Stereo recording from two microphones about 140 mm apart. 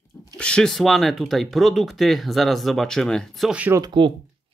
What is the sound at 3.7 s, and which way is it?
Speech, 30° right (ahead or behind).